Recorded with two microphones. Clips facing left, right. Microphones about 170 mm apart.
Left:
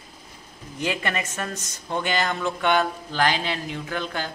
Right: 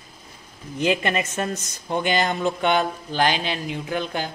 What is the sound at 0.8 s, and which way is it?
Speech, 20° right (ahead or behind).